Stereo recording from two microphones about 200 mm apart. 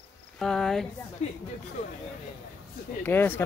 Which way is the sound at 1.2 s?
35° left (ahead or behind).